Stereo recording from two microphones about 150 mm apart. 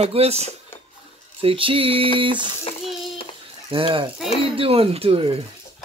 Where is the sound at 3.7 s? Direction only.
35° right (ahead or behind).